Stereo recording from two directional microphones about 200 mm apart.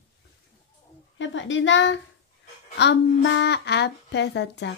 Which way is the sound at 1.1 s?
70° left (ahead or behind).